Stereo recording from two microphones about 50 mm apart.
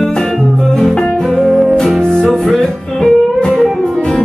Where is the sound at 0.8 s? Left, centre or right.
Centre.